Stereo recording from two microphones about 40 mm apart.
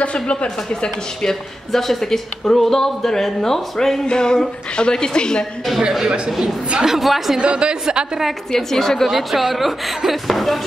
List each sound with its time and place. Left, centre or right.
0.0 s a woman's voice: left
1.2 s a woman's voice: centre
5.8 s speech: centre
6.8 s speech: centre
7.3 s speech: right
8.5 s speech: centre
9.1 s speech: centre